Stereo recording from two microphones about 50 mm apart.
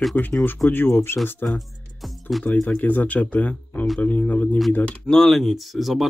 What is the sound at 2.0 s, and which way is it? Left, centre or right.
Music, centre.